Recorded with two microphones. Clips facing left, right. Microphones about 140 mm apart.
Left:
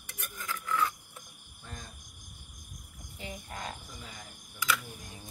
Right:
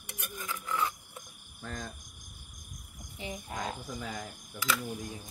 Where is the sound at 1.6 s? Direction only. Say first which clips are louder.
Right 7 dB; 90° right.